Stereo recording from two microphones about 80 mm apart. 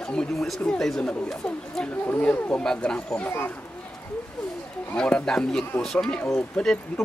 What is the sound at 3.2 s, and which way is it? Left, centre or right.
Speech, left.